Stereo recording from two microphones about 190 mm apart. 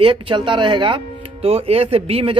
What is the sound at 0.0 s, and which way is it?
Speech, 25° right (ahead or behind).